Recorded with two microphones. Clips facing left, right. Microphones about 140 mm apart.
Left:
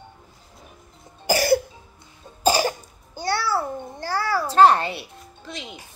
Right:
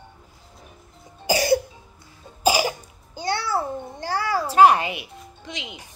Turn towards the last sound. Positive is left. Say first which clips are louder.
# right 1 dB
turn(degrees=-15)  # may be behind; listen again after turning